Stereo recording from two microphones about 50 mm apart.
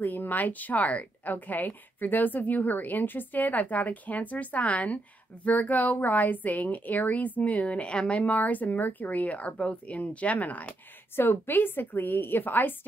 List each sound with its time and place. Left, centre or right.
0.0 s a woman's voice: left
11.1 s a woman's voice: left